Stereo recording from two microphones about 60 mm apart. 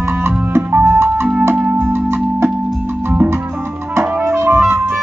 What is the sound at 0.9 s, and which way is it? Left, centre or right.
Music, right.